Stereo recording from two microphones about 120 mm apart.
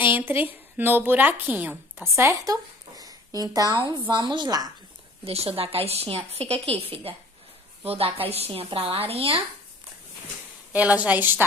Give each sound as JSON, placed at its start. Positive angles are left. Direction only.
{"t": 0.0, "sound": "a woman's voice", "side_deg": -15}
{"t": 5.2, "sound": "a woman's voice", "side_deg": -55}
{"t": 10.7, "sound": "a woman's voice", "side_deg": -10}